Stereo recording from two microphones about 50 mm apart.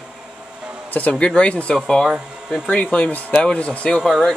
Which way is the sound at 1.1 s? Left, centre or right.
Left.